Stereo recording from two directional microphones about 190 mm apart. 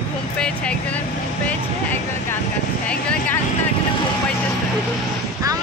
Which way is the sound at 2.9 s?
5° left (ahead or behind).